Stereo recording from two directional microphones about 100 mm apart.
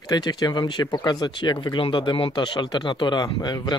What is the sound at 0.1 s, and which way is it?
Speech, 45° left (ahead or behind).